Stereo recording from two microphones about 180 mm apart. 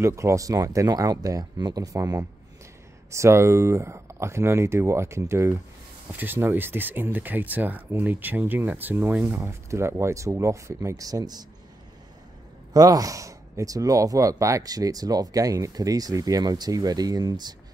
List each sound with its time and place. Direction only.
0.0 s speech: 15° right (ahead or behind)
12.7 s speech: 20° right (ahead or behind)